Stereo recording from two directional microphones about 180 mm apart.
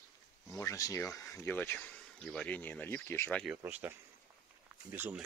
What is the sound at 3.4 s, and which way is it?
Speech, 5° right (ahead or behind).